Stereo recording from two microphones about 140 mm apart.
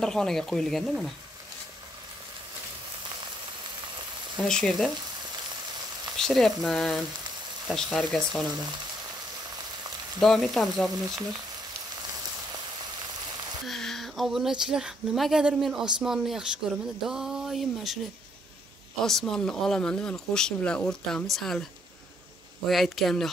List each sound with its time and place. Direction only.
0.0 s speech: 5° left (ahead or behind)
4.4 s speech: 5° left (ahead or behind)
6.1 s speech: centre (ahead or behind)
10.2 s speech: centre (ahead or behind)
13.7 s speech: centre (ahead or behind)
19.0 s speech: 5° left (ahead or behind)
22.7 s speech: centre (ahead or behind)